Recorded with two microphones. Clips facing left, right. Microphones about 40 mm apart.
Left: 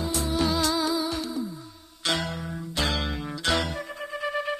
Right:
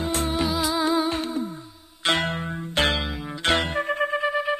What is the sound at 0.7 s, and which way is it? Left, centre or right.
Music, right.